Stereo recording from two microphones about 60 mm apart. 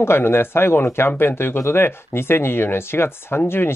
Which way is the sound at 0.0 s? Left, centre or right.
Left.